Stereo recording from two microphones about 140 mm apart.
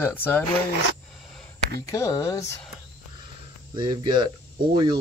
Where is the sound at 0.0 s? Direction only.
15° left (ahead or behind).